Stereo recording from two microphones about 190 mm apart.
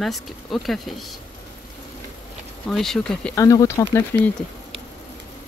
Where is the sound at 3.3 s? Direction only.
15° left (ahead or behind).